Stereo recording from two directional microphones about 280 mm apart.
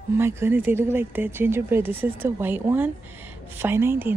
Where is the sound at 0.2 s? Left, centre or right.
Centre.